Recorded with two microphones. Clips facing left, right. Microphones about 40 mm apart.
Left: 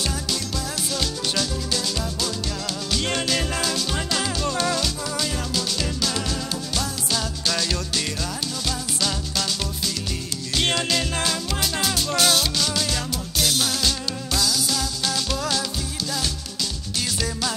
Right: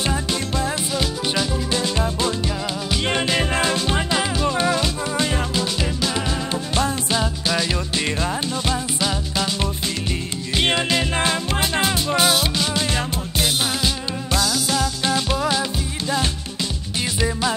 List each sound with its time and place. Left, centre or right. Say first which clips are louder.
0.0 s music: right 4 dB; right
17.2 s music: right 8 dB; right